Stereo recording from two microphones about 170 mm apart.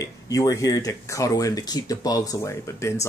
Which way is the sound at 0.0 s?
20° left (ahead or behind).